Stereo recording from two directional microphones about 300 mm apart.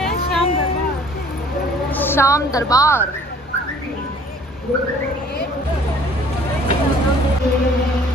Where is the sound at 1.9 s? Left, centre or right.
Centre.